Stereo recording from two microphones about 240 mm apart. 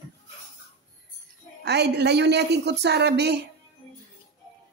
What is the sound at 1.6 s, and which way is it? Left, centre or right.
A woman's voice, right.